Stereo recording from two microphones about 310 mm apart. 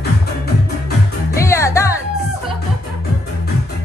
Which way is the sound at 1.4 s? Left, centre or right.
Centre.